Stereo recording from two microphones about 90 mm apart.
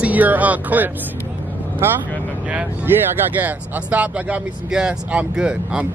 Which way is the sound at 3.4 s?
20° right (ahead or behind).